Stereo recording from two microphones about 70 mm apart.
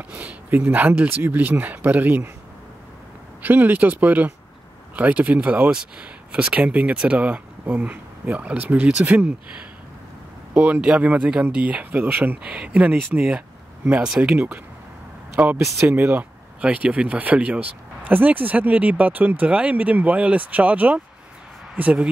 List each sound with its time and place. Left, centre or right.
0.1 s speech: right
3.4 s speech: right
10.5 s speech: right
14.3 s speech: right